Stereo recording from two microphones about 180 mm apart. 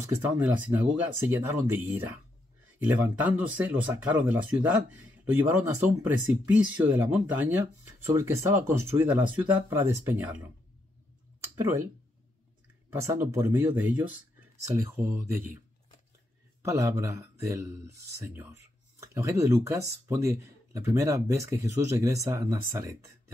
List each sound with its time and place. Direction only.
0.0 s speech: 10° right (ahead or behind)
11.6 s speech: 15° right (ahead or behind)
12.9 s speech: 15° right (ahead or behind)
16.6 s speech: 15° right (ahead or behind)